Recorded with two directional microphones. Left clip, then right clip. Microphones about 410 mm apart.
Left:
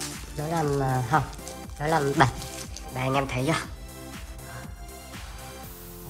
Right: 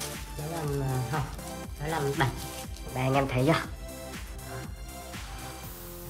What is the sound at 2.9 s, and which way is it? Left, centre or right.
Music, centre.